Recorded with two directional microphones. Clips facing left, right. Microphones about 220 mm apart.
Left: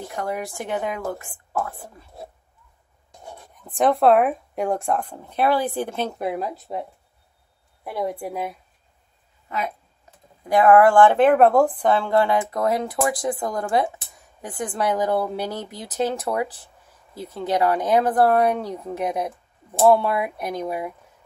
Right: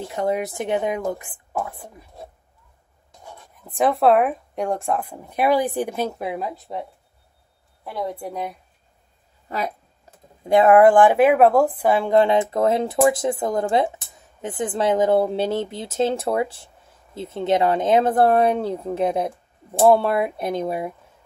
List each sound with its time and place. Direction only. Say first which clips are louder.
0.1 s speech: right 6 dB; 20° right (ahead or behind)
3.7 s speech: even; centre (ahead or behind)
6.1 s speech: left 1 dB; centre (ahead or behind)
7.8 s a woman's voice: left 1 dB; 10° left (ahead or behind)
10.4 s speech: right 2 dB; 25° right (ahead or behind)